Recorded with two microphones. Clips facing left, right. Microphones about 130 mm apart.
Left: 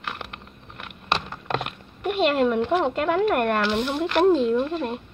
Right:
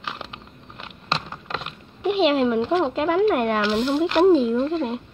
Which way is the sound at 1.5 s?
60° left (ahead or behind).